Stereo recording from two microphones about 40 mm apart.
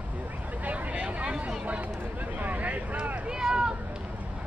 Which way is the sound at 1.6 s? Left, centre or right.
Right.